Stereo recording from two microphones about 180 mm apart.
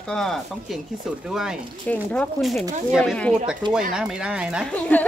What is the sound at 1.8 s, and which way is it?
Speech, 10° left (ahead or behind).